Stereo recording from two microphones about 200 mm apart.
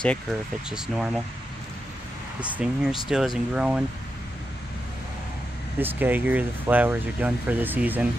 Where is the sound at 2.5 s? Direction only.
5° right (ahead or behind).